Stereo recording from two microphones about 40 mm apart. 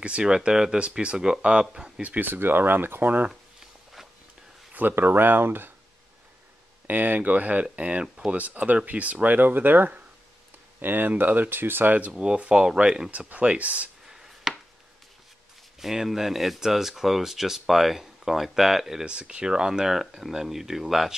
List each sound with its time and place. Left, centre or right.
0.2 s speech: centre
2.0 s speech: right
2.2 s speech: right
3.3 s a sound: centre
4.7 s speech: right
6.9 s speech: right
12.2 s speech: right
13.3 s speech: right
14.0 s a sound: centre
15.8 s speech: centre
19.0 s speech: right; by 20.8 s centre